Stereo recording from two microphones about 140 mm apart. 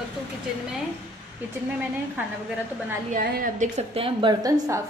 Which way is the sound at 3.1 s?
75° right (ahead or behind).